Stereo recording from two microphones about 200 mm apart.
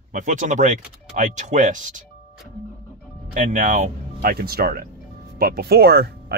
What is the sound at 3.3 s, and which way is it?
Speech, 40° right (ahead or behind).